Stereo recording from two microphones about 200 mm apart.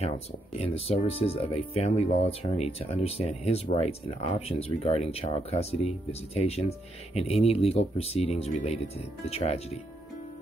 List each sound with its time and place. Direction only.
0.7 s speech: 30° left (ahead or behind)